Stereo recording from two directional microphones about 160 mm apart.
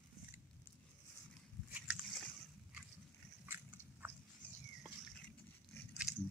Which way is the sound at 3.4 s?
10° right (ahead or behind).